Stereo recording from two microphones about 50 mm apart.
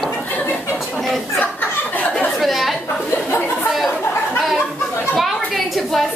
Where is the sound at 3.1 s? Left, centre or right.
Left.